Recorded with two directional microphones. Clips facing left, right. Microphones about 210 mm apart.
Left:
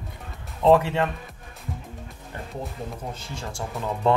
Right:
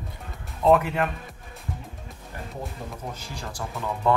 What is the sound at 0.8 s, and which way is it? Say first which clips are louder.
Speech: left 1 dB; 25° left (ahead or behind).